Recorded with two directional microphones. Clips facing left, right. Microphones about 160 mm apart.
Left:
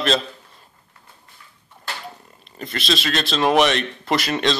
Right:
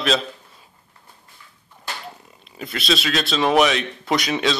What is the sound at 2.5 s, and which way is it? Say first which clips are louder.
Speech: right 1 dB; centre (ahead or behind).